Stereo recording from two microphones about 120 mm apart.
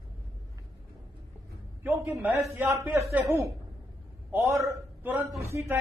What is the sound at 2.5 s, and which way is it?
A man's voice, 25° right (ahead or behind).